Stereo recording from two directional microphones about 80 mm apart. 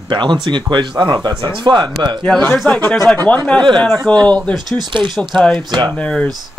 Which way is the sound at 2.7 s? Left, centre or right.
Centre.